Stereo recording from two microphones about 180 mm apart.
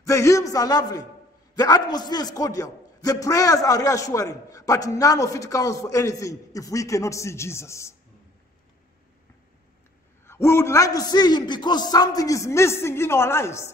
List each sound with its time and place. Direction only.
0.0 s a man's voice: 15° left (ahead or behind)
10.2 s a man's voice: 15° left (ahead or behind)